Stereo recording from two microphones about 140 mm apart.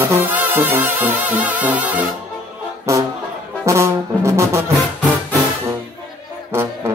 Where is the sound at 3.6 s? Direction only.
20° right (ahead or behind).